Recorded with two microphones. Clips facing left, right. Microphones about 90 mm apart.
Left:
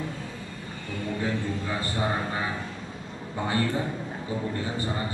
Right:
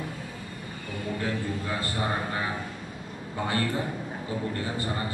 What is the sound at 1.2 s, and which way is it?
A man's voice, 20° left (ahead or behind).